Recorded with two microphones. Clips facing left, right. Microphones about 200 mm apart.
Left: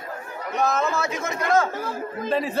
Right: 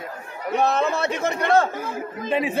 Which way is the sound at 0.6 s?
35° right (ahead or behind).